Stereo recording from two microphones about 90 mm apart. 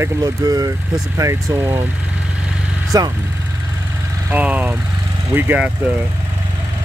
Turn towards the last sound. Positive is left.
turn(degrees=-20)  # may be behind; listen again after turning